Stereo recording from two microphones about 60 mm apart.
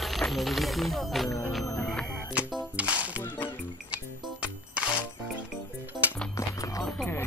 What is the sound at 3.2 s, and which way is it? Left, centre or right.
Music, left.